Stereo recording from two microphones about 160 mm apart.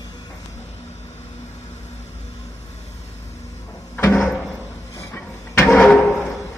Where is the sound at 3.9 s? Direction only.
10° left (ahead or behind).